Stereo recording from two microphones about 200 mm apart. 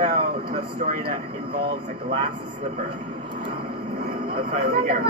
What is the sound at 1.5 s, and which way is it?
Speech, 25° right (ahead or behind).